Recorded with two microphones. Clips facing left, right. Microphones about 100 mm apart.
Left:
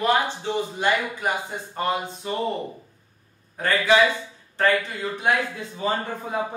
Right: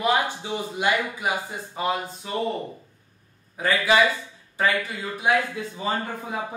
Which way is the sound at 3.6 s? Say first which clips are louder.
Left 1 dB; 5° right (ahead or behind).